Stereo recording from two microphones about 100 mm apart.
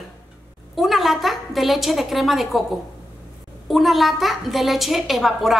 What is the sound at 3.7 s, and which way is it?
A woman's voice, centre (ahead or behind).